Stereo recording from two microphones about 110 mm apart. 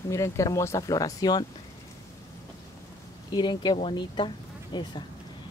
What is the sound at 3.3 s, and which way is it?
Speech, 45° left (ahead or behind).